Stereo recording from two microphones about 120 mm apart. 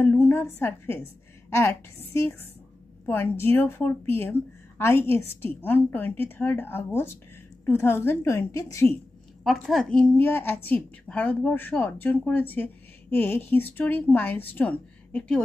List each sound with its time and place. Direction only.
0.0 s a sound: 20° left (ahead or behind)
0.6 s a woman's voice: 20° left (ahead or behind)
9.4 s speech: centre (ahead or behind)